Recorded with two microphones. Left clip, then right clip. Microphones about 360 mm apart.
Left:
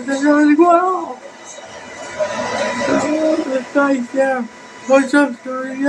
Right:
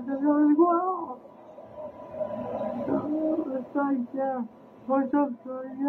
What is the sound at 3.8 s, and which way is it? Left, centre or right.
Speech, right.